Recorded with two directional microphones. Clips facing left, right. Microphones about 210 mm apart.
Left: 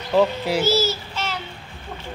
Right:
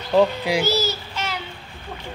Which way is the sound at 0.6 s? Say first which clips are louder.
Left 2 dB; 5° left (ahead or behind).